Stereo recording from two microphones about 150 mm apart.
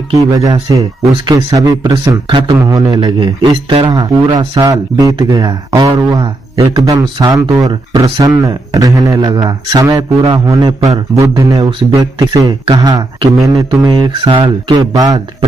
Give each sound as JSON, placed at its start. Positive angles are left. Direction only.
{"t": 0.1, "sound": "speech", "side_deg": -25}
{"t": 14.1, "sound": "speech", "side_deg": -35}